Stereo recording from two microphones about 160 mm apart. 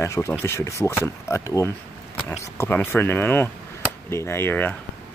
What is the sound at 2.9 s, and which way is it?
Speech, 15° left (ahead or behind).